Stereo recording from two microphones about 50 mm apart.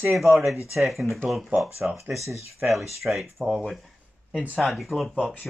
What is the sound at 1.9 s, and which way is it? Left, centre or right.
Speech, right.